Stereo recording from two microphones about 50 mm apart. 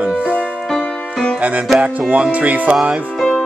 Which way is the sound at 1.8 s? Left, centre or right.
Right.